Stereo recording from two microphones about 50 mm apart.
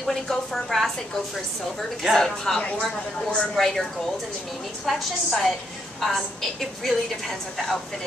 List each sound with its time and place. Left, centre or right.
0.0 s a woman's voice: centre
2.6 s speech: left
3.5 s a woman's voice: centre
4.8 s a woman's voice: centre